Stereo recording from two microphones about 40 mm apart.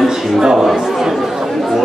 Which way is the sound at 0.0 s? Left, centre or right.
Centre.